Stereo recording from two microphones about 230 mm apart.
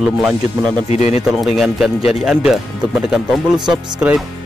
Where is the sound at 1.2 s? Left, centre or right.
Centre.